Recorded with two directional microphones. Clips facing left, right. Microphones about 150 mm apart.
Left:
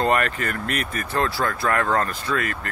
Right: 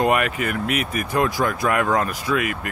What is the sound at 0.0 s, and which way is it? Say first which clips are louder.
Speech: right 2 dB; 10° right (ahead or behind).